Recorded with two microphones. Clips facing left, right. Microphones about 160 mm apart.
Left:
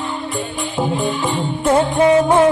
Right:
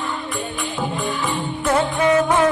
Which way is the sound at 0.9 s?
25° left (ahead or behind).